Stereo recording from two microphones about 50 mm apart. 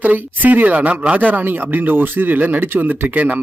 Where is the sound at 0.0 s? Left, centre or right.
Right.